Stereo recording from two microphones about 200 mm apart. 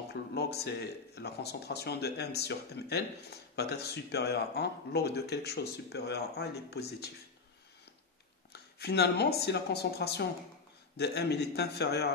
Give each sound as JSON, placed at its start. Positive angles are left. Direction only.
{"t": 0.1, "sound": "speech", "side_deg": 55}
{"t": 8.7, "sound": "speech", "side_deg": 55}